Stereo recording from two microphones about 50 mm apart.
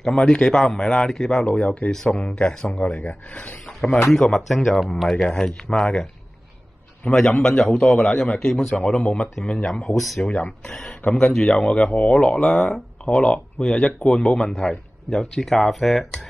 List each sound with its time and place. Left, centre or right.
0.0 s a man's voice: centre
3.0 s speech: left
4.5 s a man's voice: centre
7.1 s a man's voice: centre
9.9 s speech: centre
10.6 s a man's voice: centre
12.4 s a man's voice: centre
13.0 s a man's voice: centre